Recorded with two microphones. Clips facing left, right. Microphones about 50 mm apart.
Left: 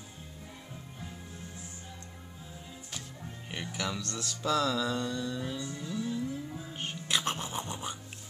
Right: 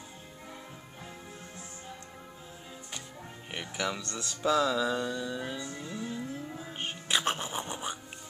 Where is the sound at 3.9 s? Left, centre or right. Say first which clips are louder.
Right 1 dB; centre.